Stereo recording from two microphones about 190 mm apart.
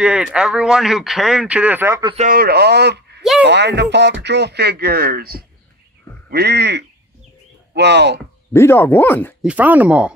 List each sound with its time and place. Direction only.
0.0 s speech: 5° right (ahead or behind)
2.1 s speech: 45° right (ahead or behind); by 8.2 s 65° right (ahead or behind)
8.5 s speech: 10° left (ahead or behind)
9.4 s speech: 5° right (ahead or behind)